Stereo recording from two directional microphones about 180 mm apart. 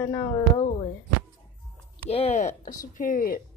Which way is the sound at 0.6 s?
35° left (ahead or behind).